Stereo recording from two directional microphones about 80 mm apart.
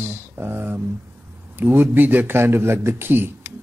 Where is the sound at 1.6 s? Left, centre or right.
Right.